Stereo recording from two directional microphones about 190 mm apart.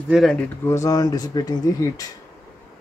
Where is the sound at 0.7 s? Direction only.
15° left (ahead or behind).